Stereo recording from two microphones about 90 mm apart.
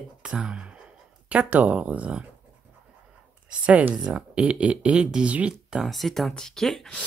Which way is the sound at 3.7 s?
15° right (ahead or behind).